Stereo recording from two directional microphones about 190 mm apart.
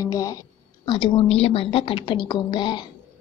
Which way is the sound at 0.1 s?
20° left (ahead or behind).